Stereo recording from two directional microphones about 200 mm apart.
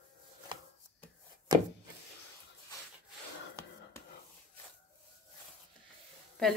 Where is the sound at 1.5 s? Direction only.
20° right (ahead or behind).